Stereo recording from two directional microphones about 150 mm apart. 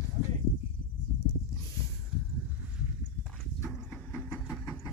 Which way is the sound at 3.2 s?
Centre (ahead or behind).